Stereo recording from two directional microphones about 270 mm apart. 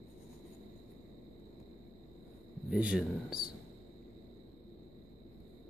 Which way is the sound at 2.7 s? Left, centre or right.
Centre.